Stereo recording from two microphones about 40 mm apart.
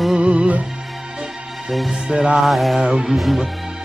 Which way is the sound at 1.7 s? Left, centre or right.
Centre.